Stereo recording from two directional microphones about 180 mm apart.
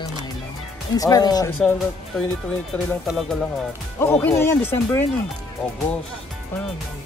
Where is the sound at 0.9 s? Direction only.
20° left (ahead or behind).